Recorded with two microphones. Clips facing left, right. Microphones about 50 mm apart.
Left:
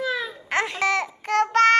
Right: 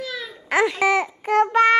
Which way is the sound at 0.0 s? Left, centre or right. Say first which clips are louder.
Left 5 dB; centre.